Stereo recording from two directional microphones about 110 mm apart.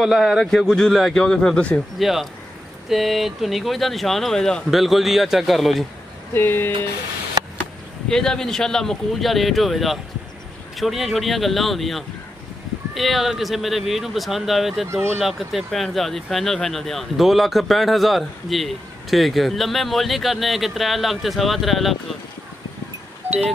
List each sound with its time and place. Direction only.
0.0 s speech: centre (ahead or behind)
2.0 s speech: centre (ahead or behind)
6.3 s music: 20° left (ahead or behind)
8.1 s speech: 5° left (ahead or behind)